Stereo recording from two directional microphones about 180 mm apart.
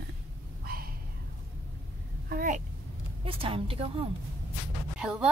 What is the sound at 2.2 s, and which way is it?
Speech, 50° right (ahead or behind).